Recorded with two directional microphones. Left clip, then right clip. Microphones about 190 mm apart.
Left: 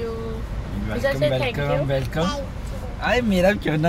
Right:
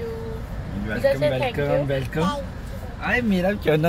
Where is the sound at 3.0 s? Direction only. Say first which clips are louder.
Left 2 dB; 20° left (ahead or behind).